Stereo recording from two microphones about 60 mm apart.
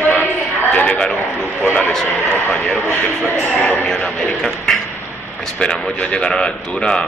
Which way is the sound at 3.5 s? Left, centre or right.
Left.